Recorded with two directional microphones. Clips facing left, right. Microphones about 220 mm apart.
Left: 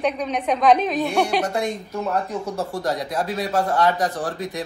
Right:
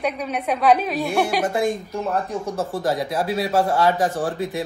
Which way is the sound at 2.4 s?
Centre (ahead or behind).